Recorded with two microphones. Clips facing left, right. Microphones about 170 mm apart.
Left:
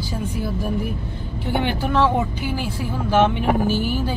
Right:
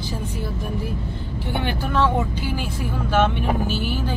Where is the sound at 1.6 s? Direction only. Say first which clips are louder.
Left 2 dB; 15° left (ahead or behind).